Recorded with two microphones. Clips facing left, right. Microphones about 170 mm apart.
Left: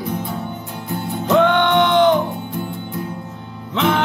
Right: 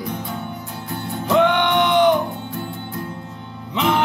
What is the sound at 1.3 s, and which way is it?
Music, 15° right (ahead or behind).